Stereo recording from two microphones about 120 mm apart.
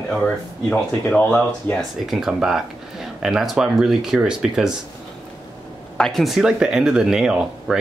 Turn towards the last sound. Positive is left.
turn(degrees=-5)  # may be behind; listen again after turning